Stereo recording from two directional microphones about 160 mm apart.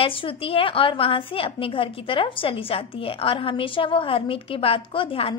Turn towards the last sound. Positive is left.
turn(degrees=35)  # may be behind; listen again after turning